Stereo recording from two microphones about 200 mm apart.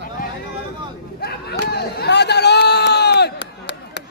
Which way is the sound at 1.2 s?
55° left (ahead or behind).